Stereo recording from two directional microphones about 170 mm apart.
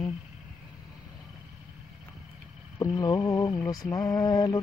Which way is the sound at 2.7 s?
25° left (ahead or behind).